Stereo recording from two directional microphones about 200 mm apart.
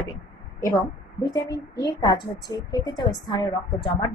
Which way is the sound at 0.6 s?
15° left (ahead or behind).